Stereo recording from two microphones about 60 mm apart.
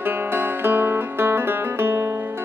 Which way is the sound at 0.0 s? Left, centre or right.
Right.